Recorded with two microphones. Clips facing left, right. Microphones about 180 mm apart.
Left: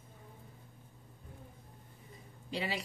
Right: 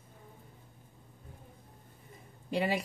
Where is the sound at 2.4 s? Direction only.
55° right (ahead or behind).